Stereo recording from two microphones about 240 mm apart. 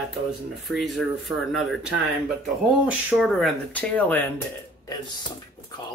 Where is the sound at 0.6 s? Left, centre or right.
Centre.